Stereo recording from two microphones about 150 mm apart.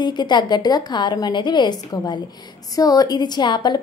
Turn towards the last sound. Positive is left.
turn(degrees=30)  # may be behind; listen again after turning